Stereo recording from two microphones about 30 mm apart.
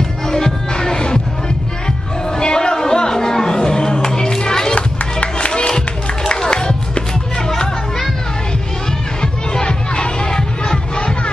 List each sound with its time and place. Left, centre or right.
0.3 s music: centre
2.3 s music: left
4.4 s children playing: left
4.7 s music: left
5.7 s music: left
7.4 s children playing: left
9.2 s music: left